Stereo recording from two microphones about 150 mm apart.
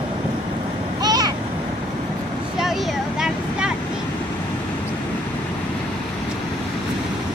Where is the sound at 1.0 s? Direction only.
25° right (ahead or behind).